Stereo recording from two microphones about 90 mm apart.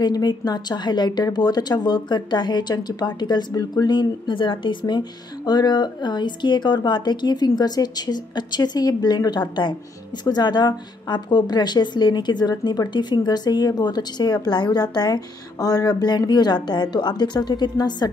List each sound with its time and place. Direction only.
0.0 s speech: 50° left (ahead or behind)